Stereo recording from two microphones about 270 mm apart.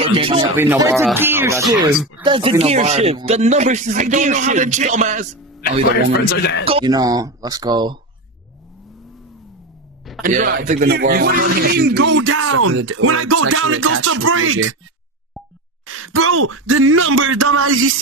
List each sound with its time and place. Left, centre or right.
0.0 s speech: right
0.6 s speech: centre; by 5.4 s right
6.2 s speech: left
6.6 s speech: centre
10.2 s speech: right
15.8 s speech: right